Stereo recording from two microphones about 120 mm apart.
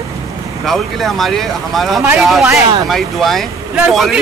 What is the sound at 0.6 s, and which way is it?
Speech, centre (ahead or behind).